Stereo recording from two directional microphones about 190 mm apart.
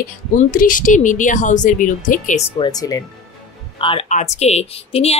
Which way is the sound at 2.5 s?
20° left (ahead or behind).